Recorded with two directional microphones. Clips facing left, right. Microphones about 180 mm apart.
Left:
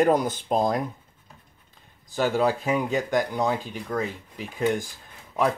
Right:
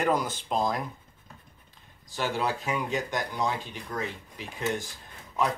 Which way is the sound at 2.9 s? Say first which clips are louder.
Left 6 dB; 55° left (ahead or behind).